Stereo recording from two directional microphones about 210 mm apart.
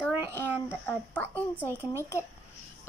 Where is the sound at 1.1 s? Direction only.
10° left (ahead or behind).